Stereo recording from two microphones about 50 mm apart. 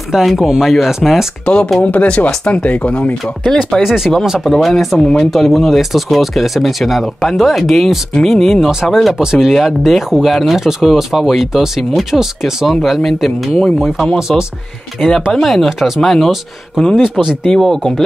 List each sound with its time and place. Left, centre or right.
0.1 s speech: centre
1.4 s speech: centre
3.8 s speech: centre
4.5 s speech: centre
15.0 s speech: centre
17.5 s speech: centre